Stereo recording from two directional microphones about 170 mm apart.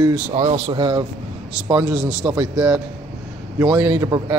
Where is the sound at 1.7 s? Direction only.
10° right (ahead or behind).